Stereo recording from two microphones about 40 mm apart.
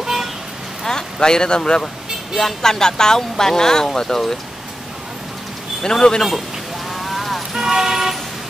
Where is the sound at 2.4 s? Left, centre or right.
Centre.